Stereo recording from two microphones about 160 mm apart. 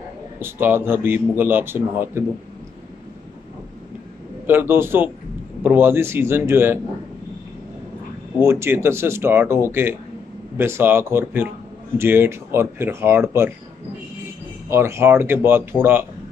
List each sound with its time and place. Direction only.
0.4 s a man's voice: 15° right (ahead or behind)
4.5 s a man's voice: 15° right (ahead or behind)
8.4 s a man's voice: 15° right (ahead or behind)
14.7 s a man's voice: 15° right (ahead or behind)